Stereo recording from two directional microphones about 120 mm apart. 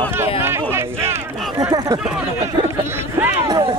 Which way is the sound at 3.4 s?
35° right (ahead or behind).